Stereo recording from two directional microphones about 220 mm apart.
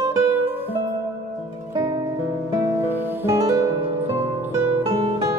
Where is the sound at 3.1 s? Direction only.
10° right (ahead or behind).